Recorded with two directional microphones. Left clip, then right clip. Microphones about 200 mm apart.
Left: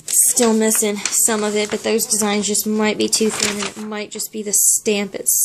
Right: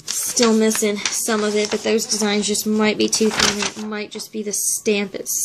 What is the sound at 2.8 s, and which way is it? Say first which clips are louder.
Speech: even; 15° left (ahead or behind).